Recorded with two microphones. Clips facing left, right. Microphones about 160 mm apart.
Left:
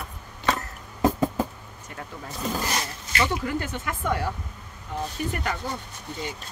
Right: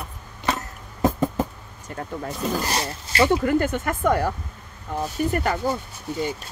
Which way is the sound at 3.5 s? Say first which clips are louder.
Right 8 dB; 50° right (ahead or behind).